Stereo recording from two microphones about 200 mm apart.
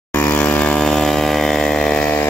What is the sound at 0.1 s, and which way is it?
Chainsaw, 10° left (ahead or behind).